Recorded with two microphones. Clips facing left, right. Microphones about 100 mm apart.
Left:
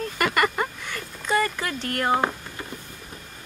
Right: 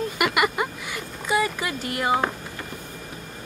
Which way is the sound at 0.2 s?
10° right (ahead or behind).